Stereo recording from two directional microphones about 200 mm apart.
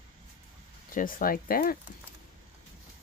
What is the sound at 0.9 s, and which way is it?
Speech, 45° left (ahead or behind).